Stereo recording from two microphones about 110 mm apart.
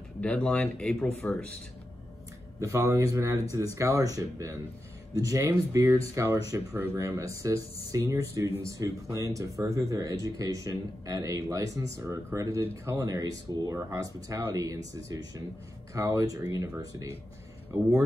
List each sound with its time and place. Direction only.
0.2 s speech: 10° left (ahead or behind)
2.6 s speech: 30° right (ahead or behind)
15.9 s speech: 30° right (ahead or behind)